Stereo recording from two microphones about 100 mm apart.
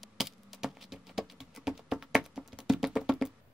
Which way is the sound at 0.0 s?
Centre (ahead or behind).